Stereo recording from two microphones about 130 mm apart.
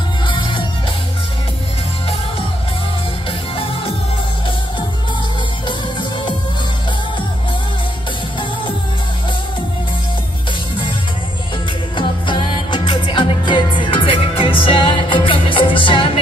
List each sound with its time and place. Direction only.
0.3 s music: 40° left (ahead or behind)
12.0 s music: 40° left (ahead or behind)